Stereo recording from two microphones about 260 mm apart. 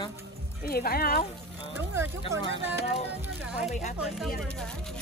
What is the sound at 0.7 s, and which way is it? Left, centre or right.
Speech, left.